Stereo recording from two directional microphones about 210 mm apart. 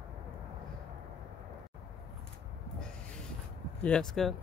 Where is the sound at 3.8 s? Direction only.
5° left (ahead or behind).